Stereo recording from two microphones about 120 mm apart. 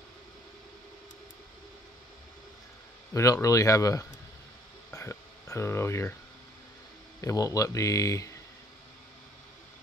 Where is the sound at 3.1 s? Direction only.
30° left (ahead or behind).